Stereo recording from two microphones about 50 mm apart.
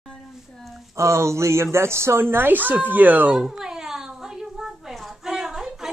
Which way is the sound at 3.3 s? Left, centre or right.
Centre.